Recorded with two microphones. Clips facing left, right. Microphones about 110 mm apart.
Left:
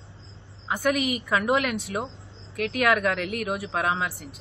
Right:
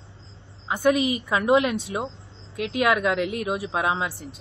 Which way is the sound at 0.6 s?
20° right (ahead or behind).